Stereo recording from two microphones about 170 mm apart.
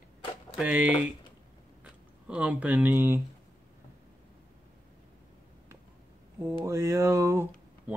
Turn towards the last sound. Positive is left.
turn(degrees=-15)  # may be behind; listen again after turning